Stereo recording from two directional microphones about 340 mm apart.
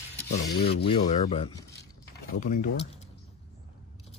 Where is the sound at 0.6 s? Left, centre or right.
Centre.